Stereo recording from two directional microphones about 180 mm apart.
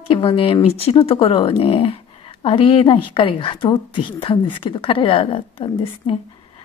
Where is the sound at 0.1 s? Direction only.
30° left (ahead or behind).